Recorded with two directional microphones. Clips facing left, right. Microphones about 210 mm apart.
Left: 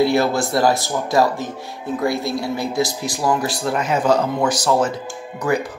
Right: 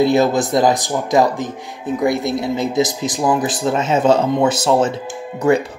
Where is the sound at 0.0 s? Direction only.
20° right (ahead or behind).